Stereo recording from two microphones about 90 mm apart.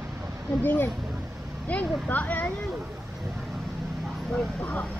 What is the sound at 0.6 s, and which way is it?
Speech, 20° left (ahead or behind).